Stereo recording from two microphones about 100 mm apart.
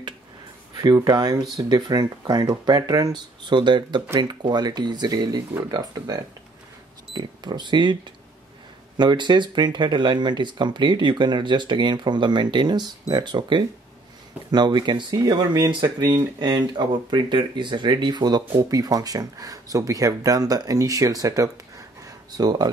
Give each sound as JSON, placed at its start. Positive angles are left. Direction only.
{"t": 0.9, "sound": "speech", "side_deg": -40}
{"t": 7.2, "sound": "speech", "side_deg": -50}